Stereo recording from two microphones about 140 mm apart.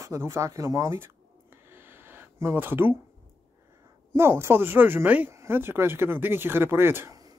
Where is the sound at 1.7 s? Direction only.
15° right (ahead or behind).